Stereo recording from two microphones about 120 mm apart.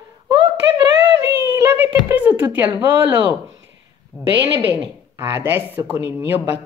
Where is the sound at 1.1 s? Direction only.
20° right (ahead or behind).